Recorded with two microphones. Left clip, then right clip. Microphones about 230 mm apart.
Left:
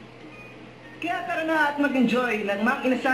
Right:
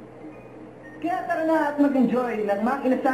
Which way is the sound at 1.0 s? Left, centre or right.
Centre.